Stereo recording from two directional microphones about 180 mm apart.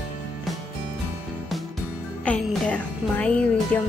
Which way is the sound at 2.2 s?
5° left (ahead or behind).